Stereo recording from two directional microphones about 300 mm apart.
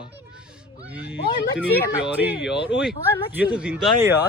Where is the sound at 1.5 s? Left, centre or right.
Centre.